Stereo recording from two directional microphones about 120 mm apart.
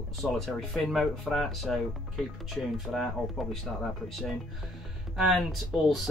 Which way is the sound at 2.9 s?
Centre (ahead or behind).